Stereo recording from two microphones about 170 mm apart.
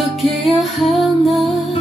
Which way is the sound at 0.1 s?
Centre (ahead or behind).